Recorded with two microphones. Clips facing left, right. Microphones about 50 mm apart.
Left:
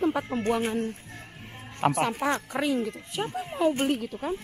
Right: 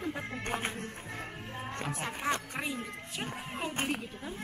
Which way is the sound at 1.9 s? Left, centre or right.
Left.